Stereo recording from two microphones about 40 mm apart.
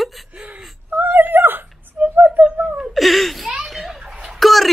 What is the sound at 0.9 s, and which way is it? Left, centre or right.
Speech, right.